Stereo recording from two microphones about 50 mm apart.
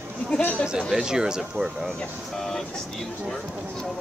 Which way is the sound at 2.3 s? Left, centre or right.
Centre.